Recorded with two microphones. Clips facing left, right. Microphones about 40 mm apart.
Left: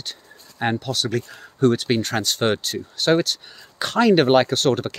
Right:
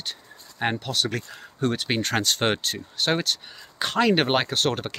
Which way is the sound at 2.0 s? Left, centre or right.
Right.